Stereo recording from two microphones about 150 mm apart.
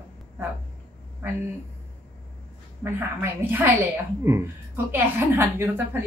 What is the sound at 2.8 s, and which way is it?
A woman's voice, 15° right (ahead or behind).